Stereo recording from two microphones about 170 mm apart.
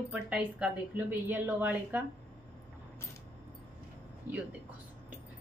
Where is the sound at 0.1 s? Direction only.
5° right (ahead or behind).